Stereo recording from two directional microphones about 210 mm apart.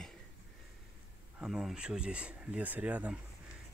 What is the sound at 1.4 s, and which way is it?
Speech, centre (ahead or behind).